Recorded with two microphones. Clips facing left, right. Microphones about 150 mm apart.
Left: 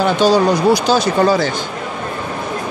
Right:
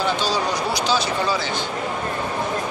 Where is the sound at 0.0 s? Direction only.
55° left (ahead or behind).